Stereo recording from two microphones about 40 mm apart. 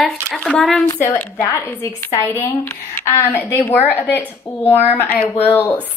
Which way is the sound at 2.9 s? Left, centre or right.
Left.